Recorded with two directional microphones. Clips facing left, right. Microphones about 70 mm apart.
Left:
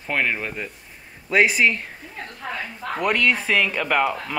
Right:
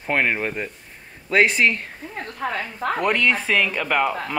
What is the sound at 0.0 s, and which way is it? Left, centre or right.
Speech, centre.